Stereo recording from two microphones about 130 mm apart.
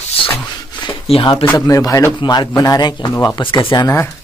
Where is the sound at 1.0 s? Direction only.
50° left (ahead or behind).